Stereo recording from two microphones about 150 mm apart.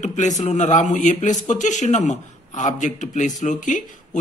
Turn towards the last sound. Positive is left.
turn(degrees=60)  # may be behind; listen again after turning